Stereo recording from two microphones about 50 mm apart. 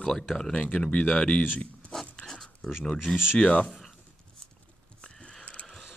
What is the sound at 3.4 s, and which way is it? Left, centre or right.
Speech, left.